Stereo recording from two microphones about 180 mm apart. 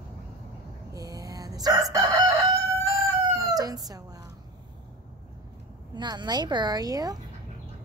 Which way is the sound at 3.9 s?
20° right (ahead or behind).